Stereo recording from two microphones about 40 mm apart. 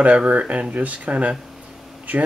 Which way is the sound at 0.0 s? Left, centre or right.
Right.